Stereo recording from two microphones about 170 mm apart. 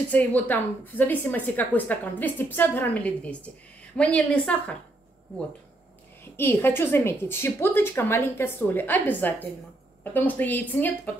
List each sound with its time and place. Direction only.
0.1 s a woman's voice: 10° left (ahead or behind)
6.3 s a woman's voice: 15° left (ahead or behind)